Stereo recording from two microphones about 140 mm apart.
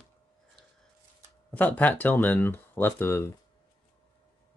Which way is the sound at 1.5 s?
10° left (ahead or behind).